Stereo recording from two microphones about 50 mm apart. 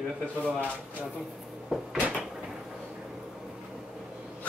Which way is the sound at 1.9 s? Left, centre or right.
Right.